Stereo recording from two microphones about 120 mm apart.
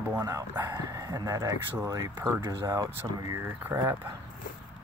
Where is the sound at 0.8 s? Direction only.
30° right (ahead or behind).